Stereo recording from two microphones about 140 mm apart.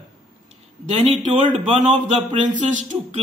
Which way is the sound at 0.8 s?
45° right (ahead or behind).